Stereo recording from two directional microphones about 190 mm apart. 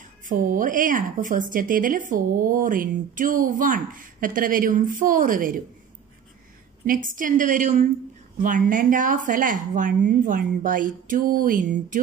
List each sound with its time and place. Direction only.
0.2 s a woman's voice: 45° right (ahead or behind)
6.9 s a woman's voice: 45° right (ahead or behind)